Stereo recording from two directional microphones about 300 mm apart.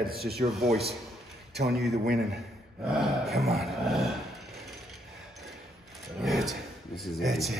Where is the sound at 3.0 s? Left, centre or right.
Centre.